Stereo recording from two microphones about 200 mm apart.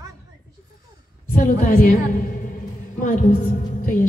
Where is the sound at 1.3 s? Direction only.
40° left (ahead or behind).